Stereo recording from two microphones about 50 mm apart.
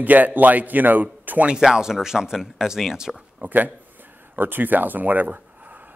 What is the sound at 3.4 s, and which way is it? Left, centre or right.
Speech, right.